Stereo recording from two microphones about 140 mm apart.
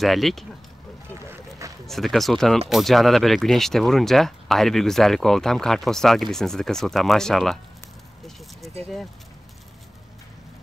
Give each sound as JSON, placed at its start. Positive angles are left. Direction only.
{"t": 0.0, "sound": "speech", "side_deg": 0}
{"t": 1.1, "sound": "boat", "side_deg": -20}
{"t": 1.9, "sound": "speech", "side_deg": 0}